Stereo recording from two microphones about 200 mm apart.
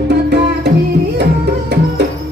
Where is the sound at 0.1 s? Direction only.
60° right (ahead or behind).